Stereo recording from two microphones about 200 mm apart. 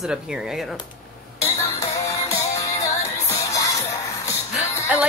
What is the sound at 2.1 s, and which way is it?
Music, 15° left (ahead or behind).